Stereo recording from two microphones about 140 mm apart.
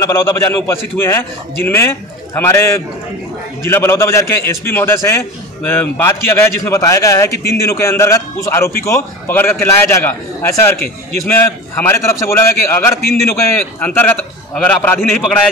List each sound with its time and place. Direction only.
0.0 s a man's voice: 15° left (ahead or behind)
15.0 s a man's voice: centre (ahead or behind)